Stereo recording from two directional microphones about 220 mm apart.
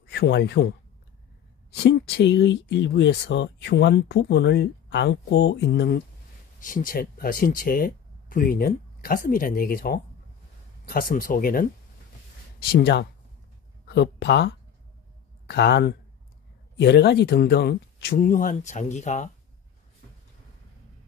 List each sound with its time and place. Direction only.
0.1 s speech: 50° left (ahead or behind)
12.7 s speech: 45° left (ahead or behind)